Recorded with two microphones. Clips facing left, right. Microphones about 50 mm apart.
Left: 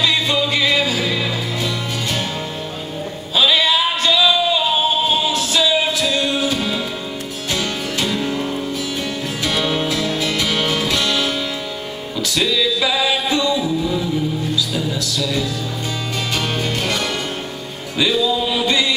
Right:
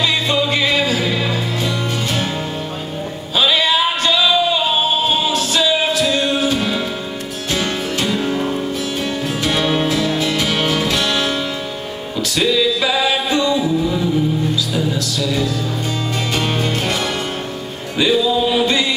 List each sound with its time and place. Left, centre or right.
0.0 s music: centre
3.3 s music: centre
8.0 s music: centre
12.4 s music: centre